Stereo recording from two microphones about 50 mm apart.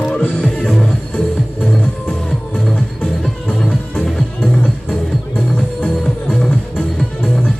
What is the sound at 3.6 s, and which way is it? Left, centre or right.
Music, left.